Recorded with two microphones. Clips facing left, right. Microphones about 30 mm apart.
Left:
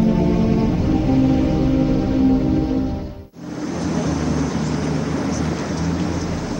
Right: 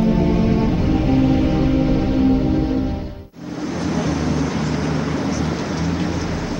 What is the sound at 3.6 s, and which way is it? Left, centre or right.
Vehicle, centre.